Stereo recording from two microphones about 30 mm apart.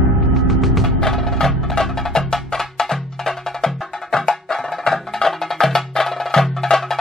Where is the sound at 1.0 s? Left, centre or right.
Centre.